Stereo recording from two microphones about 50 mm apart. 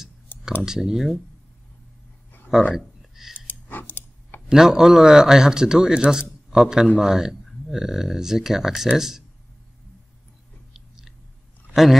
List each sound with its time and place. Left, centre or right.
0.6 s speech: centre
2.7 s a sound: centre
3.3 s a sound: left
4.5 s speech: centre
10.7 s chewing: centre
11.7 s a man's voice: centre